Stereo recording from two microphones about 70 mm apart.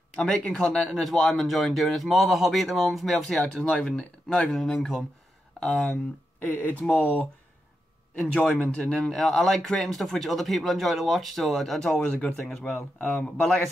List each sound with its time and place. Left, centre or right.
0.2 s speech: centre
6.4 s speech: left
8.2 s speech: centre